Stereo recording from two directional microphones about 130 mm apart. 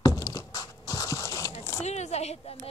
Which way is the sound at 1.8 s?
60° left (ahead or behind).